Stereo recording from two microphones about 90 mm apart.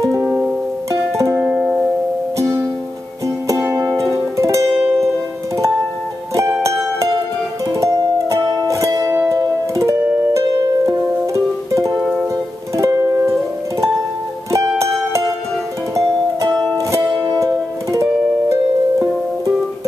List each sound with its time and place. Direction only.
0.2 s music: 5° right (ahead or behind)
1.1 s music: 35° right (ahead or behind)
1.4 s music: 5° right (ahead or behind)
3.8 s music: 35° right (ahead or behind)
4.7 s music: 10° right (ahead or behind)
6.3 s music: 35° right (ahead or behind)
12.0 s music: 5° right (ahead or behind)
12.7 s music: 35° right (ahead or behind)
16.7 s music: 35° right (ahead or behind)